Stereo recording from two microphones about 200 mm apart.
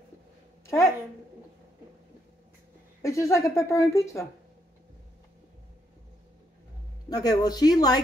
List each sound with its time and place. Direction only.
0.7 s speech: 15° left (ahead or behind)
3.0 s a woman's voice: 15° left (ahead or behind)
7.1 s speech: 20° left (ahead or behind)